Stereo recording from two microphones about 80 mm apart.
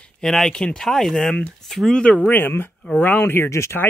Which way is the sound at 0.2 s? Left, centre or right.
Centre.